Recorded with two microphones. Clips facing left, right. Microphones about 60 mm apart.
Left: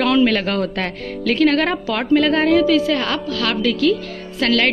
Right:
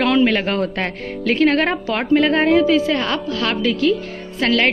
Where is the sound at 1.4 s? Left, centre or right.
Centre.